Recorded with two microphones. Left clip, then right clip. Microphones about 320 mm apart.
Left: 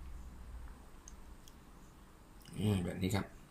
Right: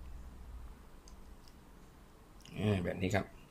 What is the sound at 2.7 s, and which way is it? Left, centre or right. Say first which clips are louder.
Speech: right 5 dB; centre.